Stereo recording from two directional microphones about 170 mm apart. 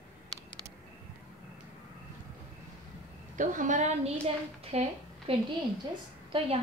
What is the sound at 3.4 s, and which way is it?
A woman's voice, 50° right (ahead or behind).